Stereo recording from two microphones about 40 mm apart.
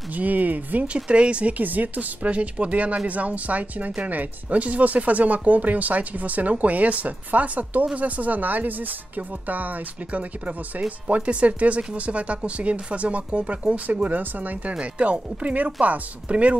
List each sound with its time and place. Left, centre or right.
0.1 s speech: right
0.9 s speech: right
1.6 s speech: right
14.7 s speech: right